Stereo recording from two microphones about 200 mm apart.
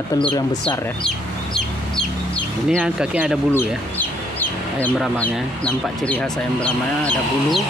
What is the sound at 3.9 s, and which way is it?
Chicken, 10° left (ahead or behind).